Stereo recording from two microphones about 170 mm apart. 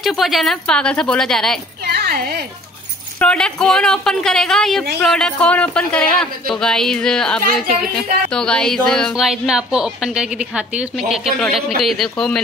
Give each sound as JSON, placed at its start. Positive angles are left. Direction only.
{"t": 0.0, "sound": "speech", "side_deg": 0}
{"t": 1.9, "sound": "a sound", "side_deg": -65}
{"t": 3.2, "sound": "speech", "side_deg": 5}